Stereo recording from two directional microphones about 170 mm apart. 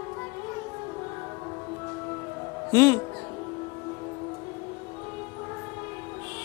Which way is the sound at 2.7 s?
15° left (ahead or behind).